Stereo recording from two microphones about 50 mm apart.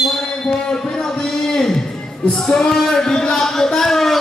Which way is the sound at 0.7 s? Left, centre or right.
Centre.